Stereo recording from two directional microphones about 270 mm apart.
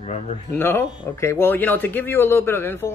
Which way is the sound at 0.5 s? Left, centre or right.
Centre.